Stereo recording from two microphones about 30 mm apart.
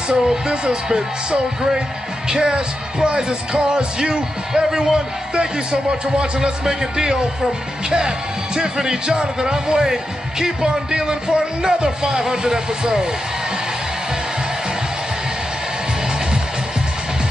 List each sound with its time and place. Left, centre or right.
0.1 s speech: right
4.6 s speech: centre
5.3 s speech: right
6.6 s speech: right
8.5 s speech: right